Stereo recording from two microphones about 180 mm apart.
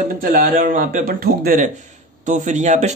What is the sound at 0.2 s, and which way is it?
Speech, 50° right (ahead or behind).